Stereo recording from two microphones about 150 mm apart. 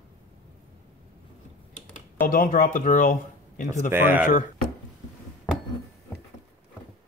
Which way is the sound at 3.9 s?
15° right (ahead or behind).